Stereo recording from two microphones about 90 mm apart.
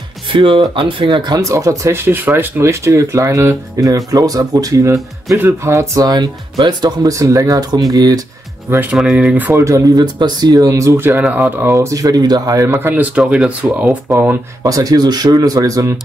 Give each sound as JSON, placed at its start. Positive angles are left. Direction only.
{"t": 0.3, "sound": "speech", "side_deg": -75}
{"t": 1.0, "sound": "speech", "side_deg": -50}
{"t": 1.4, "sound": "speech", "side_deg": -35}
{"t": 2.0, "sound": "speech", "side_deg": -25}
{"t": 8.9, "sound": "speech", "side_deg": -10}
{"t": 9.5, "sound": "speech", "side_deg": -35}
{"t": 10.1, "sound": "speech", "side_deg": -50}
{"t": 11.1, "sound": "speech", "side_deg": -20}
{"t": 11.7, "sound": "speech", "side_deg": -35}
{"t": 12.6, "sound": "speech", "side_deg": -25}
{"t": 14.6, "sound": "speech", "side_deg": -40}